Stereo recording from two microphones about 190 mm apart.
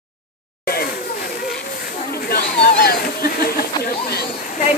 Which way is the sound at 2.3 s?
50° left (ahead or behind).